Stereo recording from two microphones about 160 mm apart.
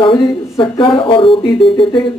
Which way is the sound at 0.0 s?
30° left (ahead or behind).